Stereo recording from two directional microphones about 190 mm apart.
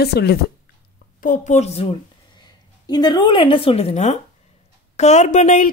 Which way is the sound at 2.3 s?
20° left (ahead or behind).